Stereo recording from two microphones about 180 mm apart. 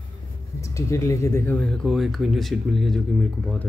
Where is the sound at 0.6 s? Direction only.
15° left (ahead or behind).